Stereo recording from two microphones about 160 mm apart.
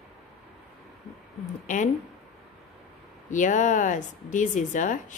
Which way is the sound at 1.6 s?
50° left (ahead or behind).